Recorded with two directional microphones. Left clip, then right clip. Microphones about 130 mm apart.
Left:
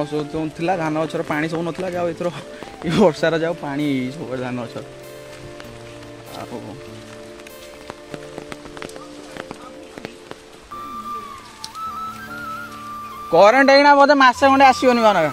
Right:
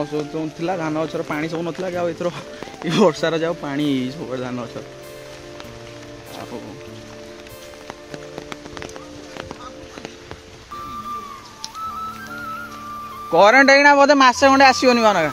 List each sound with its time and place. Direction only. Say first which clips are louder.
0.3 s speech: left 2 dB; 25° left (ahead or behind)
1.9 s speech: right 1 dB; 5° left (ahead or behind)
3.4 s speech: even; centre (ahead or behind)
4.3 s speech: left 1 dB; 10° left (ahead or behind)
13.3 s speech: even; 10° left (ahead or behind)
13.7 s speech: even; 20° right (ahead or behind)
14.2 s speech: even; 5° right (ahead or behind)